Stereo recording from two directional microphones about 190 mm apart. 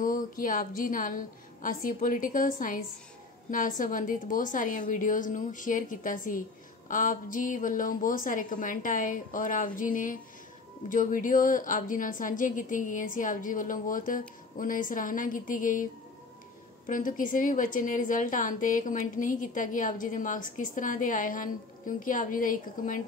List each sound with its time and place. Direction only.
0.0 s a woman's voice: 45° left (ahead or behind)